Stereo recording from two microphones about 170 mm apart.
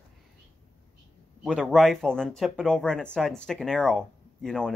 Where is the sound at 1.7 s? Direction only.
Centre (ahead or behind).